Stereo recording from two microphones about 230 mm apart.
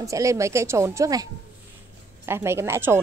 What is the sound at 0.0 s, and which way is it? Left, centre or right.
A woman's voice, centre.